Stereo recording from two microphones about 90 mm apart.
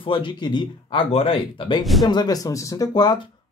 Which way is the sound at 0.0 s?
65° left (ahead or behind).